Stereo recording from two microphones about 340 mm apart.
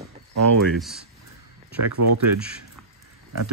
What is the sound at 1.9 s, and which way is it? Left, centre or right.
Speech, right.